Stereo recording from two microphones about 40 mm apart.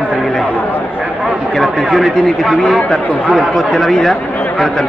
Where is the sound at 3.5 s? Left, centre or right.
Centre.